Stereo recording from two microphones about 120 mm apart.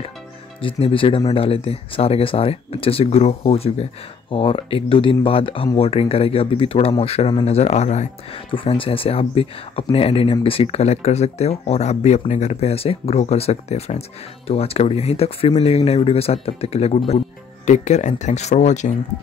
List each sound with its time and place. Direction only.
0.6 s speech: 50° left (ahead or behind); by 8.1 s 70° left (ahead or behind)
8.5 s speech: 45° left (ahead or behind)
17.6 s speech: 80° left